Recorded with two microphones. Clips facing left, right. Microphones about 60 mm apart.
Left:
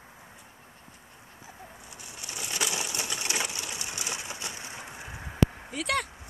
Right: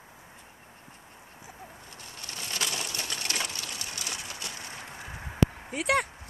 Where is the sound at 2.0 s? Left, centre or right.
Centre.